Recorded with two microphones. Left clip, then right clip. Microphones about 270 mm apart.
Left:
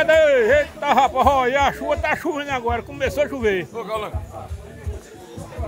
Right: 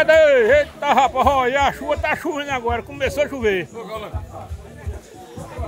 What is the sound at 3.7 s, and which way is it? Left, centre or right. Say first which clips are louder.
Speech: left 4 dB; centre.